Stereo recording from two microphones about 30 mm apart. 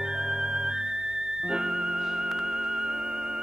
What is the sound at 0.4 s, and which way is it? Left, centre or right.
Theremin, right.